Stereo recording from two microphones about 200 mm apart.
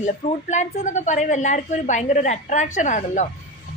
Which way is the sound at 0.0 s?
35° left (ahead or behind).